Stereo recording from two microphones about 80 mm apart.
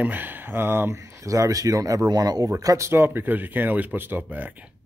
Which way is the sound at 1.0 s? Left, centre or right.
Right.